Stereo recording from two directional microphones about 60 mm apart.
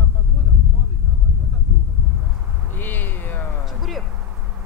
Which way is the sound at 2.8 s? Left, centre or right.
Left.